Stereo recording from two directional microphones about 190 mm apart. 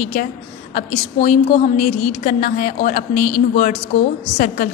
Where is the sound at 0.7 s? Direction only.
40° left (ahead or behind).